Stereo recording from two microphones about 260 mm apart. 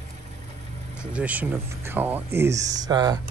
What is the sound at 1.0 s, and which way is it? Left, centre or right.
Speech, centre.